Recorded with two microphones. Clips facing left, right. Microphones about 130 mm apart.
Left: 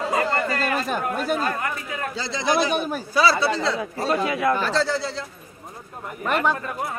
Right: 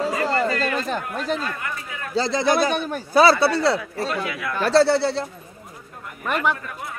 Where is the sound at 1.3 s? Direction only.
50° left (ahead or behind).